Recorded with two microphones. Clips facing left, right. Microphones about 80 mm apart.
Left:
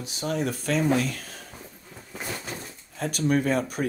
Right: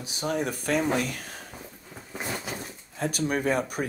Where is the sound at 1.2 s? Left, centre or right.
Right.